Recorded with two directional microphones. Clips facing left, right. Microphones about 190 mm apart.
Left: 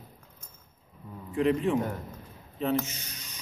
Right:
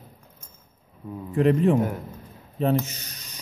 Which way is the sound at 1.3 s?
45° right (ahead or behind).